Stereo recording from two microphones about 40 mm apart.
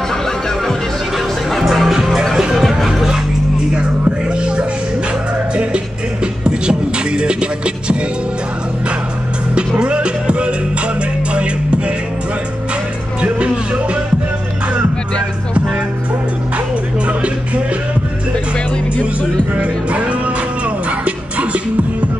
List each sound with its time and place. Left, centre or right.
1.6 s music: centre
4.4 s music: right
9.8 s music: right
19.5 s music: right